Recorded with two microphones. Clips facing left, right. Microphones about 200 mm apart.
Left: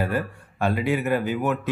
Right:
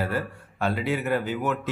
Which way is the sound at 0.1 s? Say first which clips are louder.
Left 2 dB; 15° left (ahead or behind).